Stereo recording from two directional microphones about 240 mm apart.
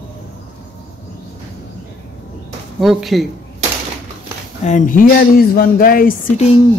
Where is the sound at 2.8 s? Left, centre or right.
Centre.